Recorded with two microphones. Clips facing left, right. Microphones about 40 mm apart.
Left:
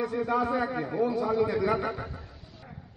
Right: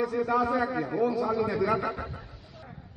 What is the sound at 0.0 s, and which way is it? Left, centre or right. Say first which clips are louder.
A man's voice: right 1 dB; centre.